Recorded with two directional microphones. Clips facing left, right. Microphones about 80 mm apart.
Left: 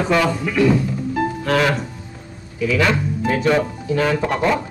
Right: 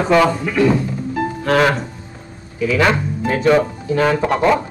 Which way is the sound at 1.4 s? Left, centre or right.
Right.